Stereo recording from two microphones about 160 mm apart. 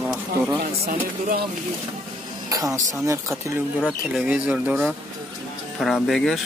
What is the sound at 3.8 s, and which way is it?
A man's voice, 5° right (ahead or behind).